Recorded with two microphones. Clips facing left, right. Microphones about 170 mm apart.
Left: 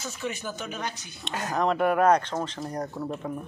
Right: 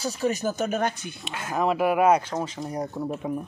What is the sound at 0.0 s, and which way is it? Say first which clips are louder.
Speech: right 8 dB; 35° right (ahead or behind).